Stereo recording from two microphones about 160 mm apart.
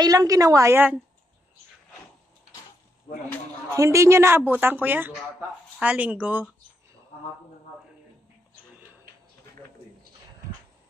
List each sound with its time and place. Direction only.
0.0 s a woman's voice: 25° right (ahead or behind)
3.7 s a woman's voice: 20° right (ahead or behind)